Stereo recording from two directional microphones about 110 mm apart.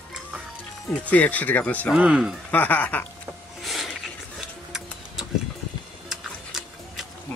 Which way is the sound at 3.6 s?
Centre (ahead or behind).